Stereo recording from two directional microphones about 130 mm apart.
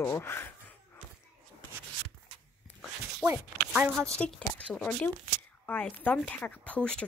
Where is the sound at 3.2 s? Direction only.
15° right (ahead or behind).